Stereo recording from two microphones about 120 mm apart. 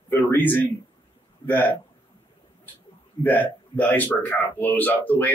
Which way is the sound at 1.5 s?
15° left (ahead or behind).